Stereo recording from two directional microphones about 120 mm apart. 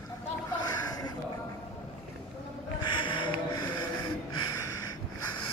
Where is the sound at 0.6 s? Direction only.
30° left (ahead or behind).